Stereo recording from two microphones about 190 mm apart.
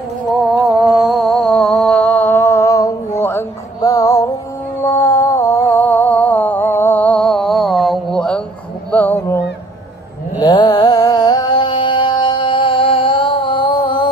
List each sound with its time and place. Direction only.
0.7 s music: 5° right (ahead or behind); by 4.3 s 20° left (ahead or behind)
4.8 s a sound: 15° left (ahead or behind)
10.4 s music: 20° left (ahead or behind)